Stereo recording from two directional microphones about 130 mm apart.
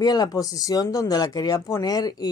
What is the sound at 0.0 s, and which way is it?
Speech, 30° left (ahead or behind).